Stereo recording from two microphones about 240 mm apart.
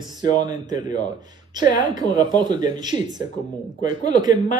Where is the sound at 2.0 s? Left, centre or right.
Centre.